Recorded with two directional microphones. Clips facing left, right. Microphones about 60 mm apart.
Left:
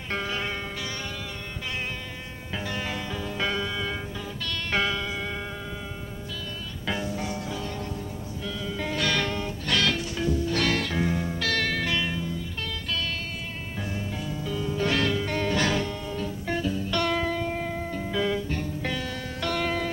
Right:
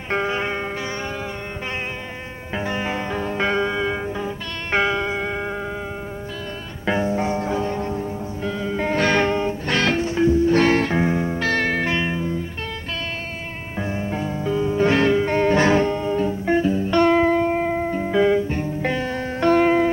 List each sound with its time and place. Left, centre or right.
0.1 s music: right
2.5 s music: right
6.9 s music: right
13.7 s music: right